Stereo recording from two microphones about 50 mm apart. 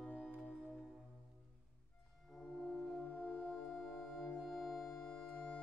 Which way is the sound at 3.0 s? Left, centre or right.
Left.